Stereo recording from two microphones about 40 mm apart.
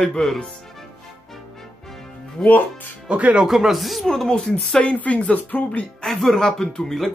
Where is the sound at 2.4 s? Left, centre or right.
Left.